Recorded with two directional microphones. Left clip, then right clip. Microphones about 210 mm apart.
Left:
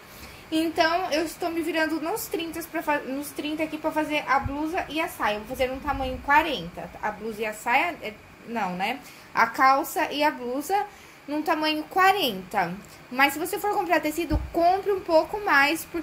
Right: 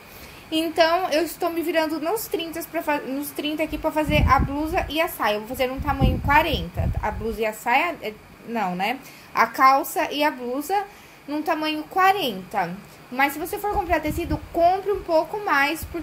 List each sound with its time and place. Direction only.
0.5 s a woman's voice: 15° right (ahead or behind); by 15.8 s 5° left (ahead or behind)